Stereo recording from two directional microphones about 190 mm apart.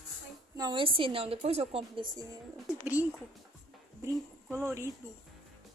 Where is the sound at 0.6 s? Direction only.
25° right (ahead or behind).